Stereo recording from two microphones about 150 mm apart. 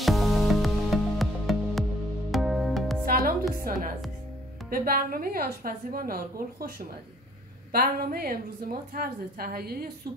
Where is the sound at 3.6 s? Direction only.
70° right (ahead or behind).